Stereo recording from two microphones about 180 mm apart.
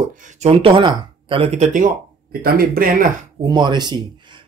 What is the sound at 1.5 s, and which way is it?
Speech, 45° right (ahead or behind).